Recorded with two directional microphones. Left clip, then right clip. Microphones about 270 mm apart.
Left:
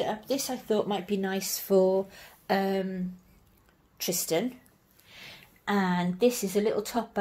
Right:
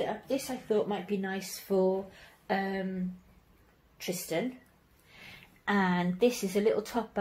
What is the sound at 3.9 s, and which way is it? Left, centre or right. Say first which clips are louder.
A woman's voice: left 5 dB; left.